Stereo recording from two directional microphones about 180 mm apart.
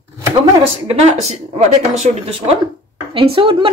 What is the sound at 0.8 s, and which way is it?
Speech, 40° right (ahead or behind).